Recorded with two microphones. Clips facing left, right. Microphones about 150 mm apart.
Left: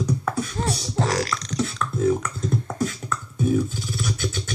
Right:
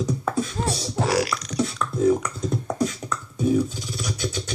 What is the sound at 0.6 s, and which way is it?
Beatboxing, 10° right (ahead or behind).